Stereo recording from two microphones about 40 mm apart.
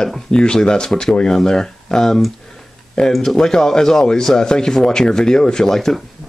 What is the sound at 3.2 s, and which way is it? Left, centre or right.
Speech, centre.